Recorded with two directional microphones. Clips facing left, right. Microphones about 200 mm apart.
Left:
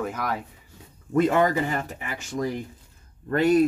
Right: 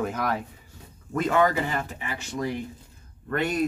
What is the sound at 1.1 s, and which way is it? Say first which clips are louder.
Speech: left 2 dB; 30° left (ahead or behind).